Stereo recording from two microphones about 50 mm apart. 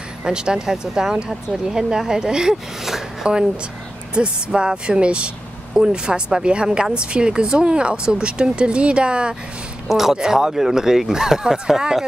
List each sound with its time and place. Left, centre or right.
0.2 s speech: centre
3.3 s speech: centre
9.8 s speech: centre